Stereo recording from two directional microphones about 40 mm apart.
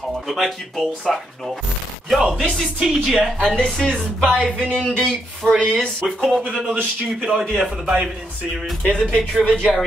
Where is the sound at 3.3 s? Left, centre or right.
Left.